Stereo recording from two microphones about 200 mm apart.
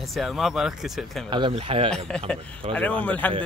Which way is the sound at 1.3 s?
25° right (ahead or behind).